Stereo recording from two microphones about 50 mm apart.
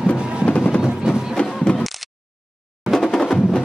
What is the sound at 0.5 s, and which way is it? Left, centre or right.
Music, left.